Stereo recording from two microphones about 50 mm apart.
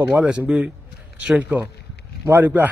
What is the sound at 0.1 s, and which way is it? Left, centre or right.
A man's voice, centre.